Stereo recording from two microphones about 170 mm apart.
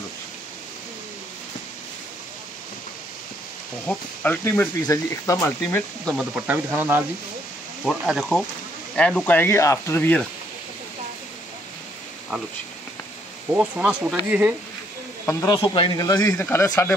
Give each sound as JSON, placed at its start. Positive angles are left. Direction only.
{"t": 3.8, "sound": "speech", "side_deg": 10}
{"t": 6.1, "sound": "speech", "side_deg": -10}
{"t": 7.8, "sound": "speech", "side_deg": 0}
{"t": 13.5, "sound": "speech", "side_deg": -10}
{"t": 15.2, "sound": "speech", "side_deg": 20}